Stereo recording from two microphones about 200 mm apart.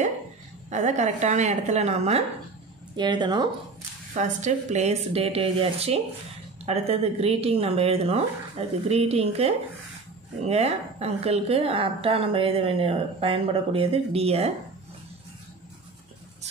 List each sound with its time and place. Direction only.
0.7 s speech: 35° right (ahead or behind)
3.0 s a woman's voice: 20° right (ahead or behind)
4.1 s a woman's voice: 35° right (ahead or behind)